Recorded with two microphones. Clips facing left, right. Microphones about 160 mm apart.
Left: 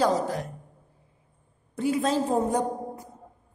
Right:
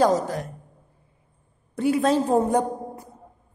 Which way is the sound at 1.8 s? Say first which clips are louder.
Right 4 dB; 65° right (ahead or behind).